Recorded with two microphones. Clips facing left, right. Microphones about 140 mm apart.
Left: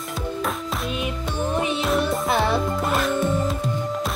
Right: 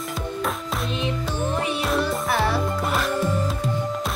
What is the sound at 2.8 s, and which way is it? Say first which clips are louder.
Music: left 2 dB; centre (ahead or behind).